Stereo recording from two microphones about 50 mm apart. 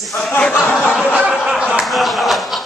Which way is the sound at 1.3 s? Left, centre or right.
Centre.